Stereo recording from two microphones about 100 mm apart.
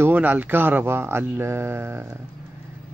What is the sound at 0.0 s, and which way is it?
Speech, 20° right (ahead or behind).